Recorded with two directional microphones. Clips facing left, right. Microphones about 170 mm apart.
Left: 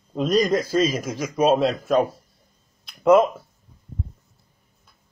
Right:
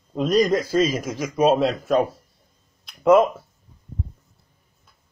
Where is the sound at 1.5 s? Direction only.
35° left (ahead or behind).